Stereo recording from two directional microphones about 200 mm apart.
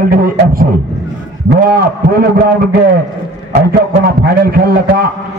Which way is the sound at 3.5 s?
50° right (ahead or behind).